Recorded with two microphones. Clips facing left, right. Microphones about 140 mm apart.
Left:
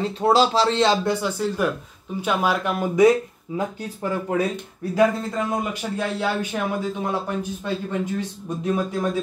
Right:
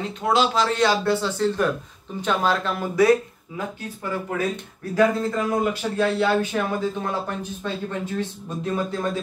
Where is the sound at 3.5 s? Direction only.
30° left (ahead or behind).